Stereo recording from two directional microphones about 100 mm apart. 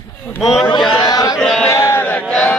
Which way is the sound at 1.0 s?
40° left (ahead or behind).